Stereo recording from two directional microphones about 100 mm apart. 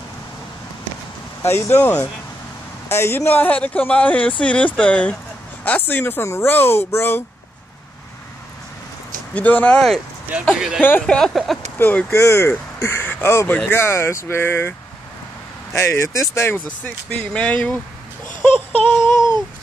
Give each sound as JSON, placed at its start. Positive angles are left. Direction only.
{"t": 1.4, "sound": "speech", "side_deg": 25}
{"t": 9.3, "sound": "speech", "side_deg": 15}
{"t": 10.5, "sound": "speech", "side_deg": -10}
{"t": 10.8, "sound": "speech", "side_deg": 20}
{"t": 11.1, "sound": "a sound", "side_deg": 5}
{"t": 11.8, "sound": "speech", "side_deg": 15}
{"t": 12.1, "sound": "speech", "side_deg": 30}